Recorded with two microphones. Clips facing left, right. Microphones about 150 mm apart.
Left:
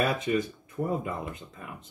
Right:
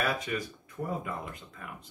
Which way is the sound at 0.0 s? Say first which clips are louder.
Left 5 dB; 20° left (ahead or behind).